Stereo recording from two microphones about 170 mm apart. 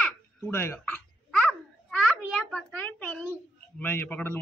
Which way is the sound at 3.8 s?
10° left (ahead or behind).